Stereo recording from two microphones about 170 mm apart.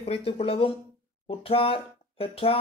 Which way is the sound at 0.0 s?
35° left (ahead or behind).